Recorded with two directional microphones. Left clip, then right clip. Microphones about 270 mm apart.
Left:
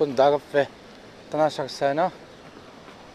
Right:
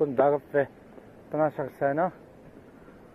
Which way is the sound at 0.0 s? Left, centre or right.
Centre.